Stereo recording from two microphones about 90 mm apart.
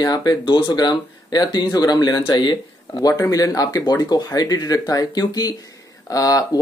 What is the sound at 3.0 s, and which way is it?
Speech, 40° left (ahead or behind).